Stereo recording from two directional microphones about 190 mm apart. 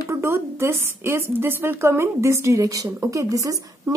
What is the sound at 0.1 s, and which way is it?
A woman's voice, 15° right (ahead or behind).